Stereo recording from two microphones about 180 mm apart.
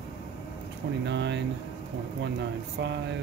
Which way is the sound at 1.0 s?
75° right (ahead or behind).